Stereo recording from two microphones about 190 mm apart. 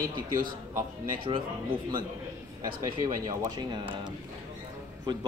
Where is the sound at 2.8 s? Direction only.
20° right (ahead or behind).